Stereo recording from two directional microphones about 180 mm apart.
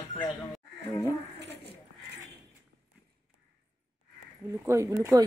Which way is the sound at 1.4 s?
70° right (ahead or behind).